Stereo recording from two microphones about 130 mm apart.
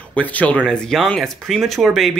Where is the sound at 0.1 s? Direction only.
10° left (ahead or behind).